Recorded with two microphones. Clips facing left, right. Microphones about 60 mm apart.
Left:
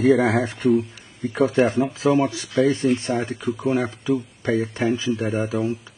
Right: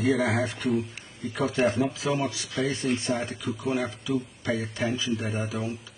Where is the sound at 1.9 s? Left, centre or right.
Left.